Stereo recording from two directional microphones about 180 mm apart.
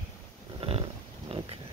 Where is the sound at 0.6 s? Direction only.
35° right (ahead or behind).